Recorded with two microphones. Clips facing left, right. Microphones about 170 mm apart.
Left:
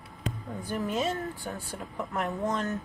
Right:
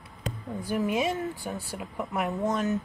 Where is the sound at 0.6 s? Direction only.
10° right (ahead or behind).